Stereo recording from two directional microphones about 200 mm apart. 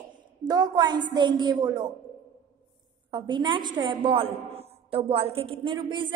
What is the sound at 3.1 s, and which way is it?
A woman's voice, 20° right (ahead or behind).